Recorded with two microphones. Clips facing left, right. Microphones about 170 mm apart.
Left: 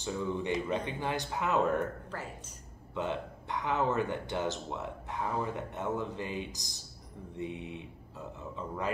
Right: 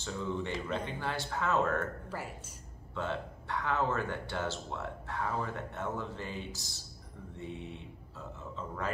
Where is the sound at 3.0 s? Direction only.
15° left (ahead or behind).